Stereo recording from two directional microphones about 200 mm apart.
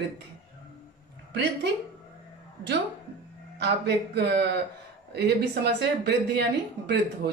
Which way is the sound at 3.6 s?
55° right (ahead or behind).